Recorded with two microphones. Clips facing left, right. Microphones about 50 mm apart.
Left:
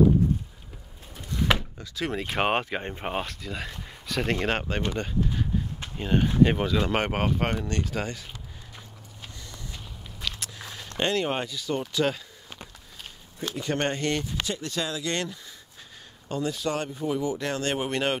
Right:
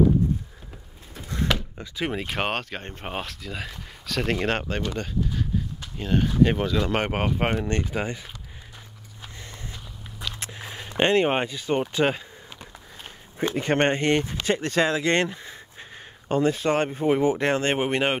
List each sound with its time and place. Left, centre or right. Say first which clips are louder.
1.1 s door: right 1 dB; right
1.8 s speech: right 2 dB; centre
2.2 s speech: left 2 dB; centre
2.5 s speech: left 3 dB; centre
3.1 s speech: even; centre
4.8 s speech: even; centre
7.3 s speech: right 3 dB; right
9.4 s a sound: right 3 dB; right
10.1 s a sound: even; centre
10.6 s a sound: right 3 dB; right
11.0 s speech: right 6 dB; right
14.4 s speech: right 8 dB; right